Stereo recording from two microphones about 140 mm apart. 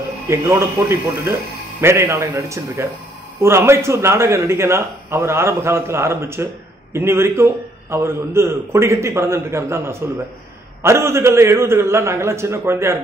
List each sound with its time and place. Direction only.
0.3 s a man's voice: 20° right (ahead or behind)